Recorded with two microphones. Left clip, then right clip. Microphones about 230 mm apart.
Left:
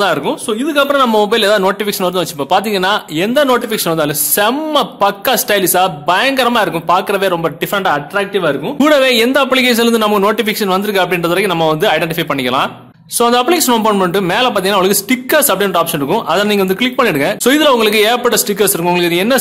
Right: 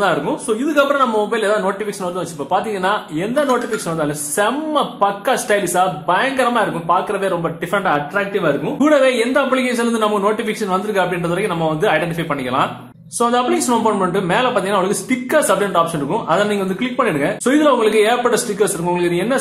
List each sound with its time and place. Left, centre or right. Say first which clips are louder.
0.7 s a man's voice: left 5 dB; left